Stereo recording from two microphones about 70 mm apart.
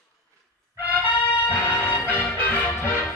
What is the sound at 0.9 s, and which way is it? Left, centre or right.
Music, left.